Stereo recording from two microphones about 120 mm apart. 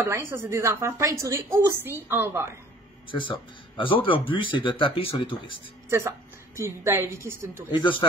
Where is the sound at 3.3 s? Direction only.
45° left (ahead or behind).